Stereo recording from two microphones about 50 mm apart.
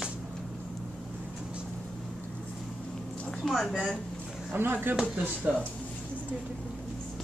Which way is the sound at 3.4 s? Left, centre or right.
Centre.